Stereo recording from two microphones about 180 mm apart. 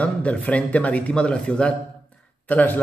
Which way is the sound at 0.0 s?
5° left (ahead or behind).